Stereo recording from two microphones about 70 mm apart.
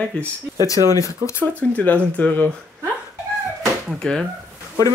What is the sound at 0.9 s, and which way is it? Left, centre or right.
Speech, left.